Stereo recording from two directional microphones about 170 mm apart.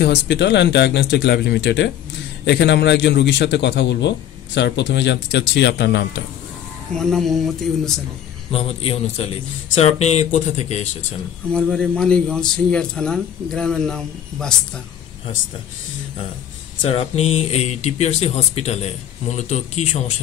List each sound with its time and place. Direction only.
0.0 s speech: 90° left
2.4 s speech: 90° left
6.9 s a man's voice: 5° left (ahead or behind)
8.5 s speech: 35° left (ahead or behind)
11.5 s a man's voice: 5° left (ahead or behind)
16.8 s speech: 35° left (ahead or behind)